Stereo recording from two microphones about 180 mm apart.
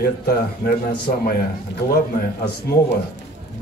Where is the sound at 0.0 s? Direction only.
55° left (ahead or behind).